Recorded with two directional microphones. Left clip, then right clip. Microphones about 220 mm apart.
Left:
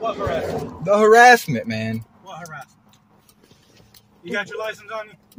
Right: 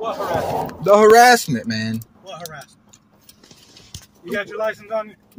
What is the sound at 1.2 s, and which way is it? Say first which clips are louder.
Speech: even; 20° left (ahead or behind).